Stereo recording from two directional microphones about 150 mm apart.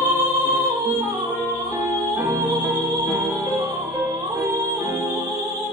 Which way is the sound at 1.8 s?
20° right (ahead or behind).